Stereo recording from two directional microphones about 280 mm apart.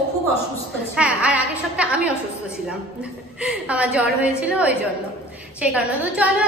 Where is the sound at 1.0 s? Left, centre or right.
Centre.